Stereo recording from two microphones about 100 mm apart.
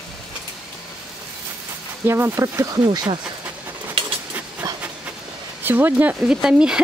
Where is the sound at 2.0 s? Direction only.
25° right (ahead or behind).